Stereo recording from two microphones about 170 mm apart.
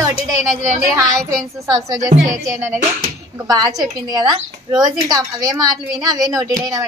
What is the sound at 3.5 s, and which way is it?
A woman's voice, 25° right (ahead or behind).